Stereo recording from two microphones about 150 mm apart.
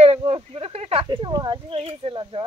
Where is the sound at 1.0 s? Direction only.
25° right (ahead or behind).